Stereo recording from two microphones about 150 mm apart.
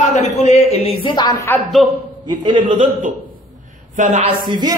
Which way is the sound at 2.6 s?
60° right (ahead or behind).